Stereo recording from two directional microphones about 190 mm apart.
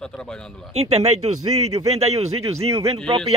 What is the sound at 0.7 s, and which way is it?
A man's voice, 35° right (ahead or behind).